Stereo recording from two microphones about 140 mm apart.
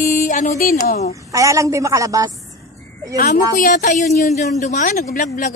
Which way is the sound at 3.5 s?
70° left (ahead or behind).